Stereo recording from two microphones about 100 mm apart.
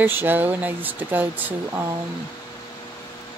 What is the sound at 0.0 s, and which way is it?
Speech, 20° right (ahead or behind).